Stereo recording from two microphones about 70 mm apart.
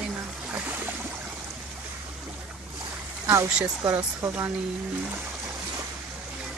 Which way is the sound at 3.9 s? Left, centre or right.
Right.